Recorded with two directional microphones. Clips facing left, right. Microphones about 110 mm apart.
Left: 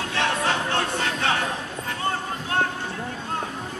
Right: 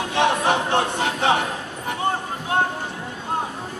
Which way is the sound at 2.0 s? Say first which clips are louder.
Right 3 dB; 20° right (ahead or behind).